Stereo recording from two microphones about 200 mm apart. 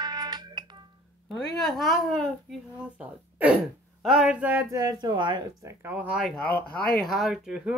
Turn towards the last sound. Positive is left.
turn(degrees=-5)  # may be behind; listen again after turning